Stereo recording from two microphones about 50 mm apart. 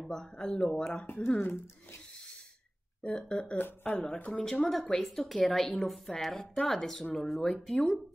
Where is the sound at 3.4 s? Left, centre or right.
Left.